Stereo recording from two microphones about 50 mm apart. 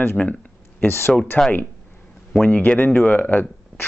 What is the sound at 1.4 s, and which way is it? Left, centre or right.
Speech, left.